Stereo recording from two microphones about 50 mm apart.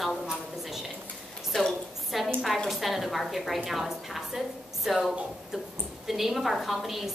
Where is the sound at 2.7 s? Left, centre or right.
Centre.